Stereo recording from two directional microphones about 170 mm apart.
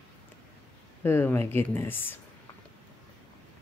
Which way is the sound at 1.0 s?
10° left (ahead or behind).